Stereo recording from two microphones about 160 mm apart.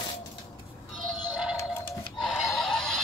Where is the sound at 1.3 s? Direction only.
5° right (ahead or behind).